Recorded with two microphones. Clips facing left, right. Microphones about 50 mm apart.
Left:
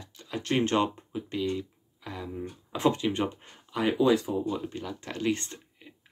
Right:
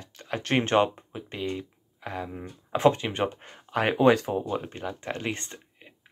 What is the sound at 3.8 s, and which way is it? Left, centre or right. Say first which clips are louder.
Speech: right 3 dB; right.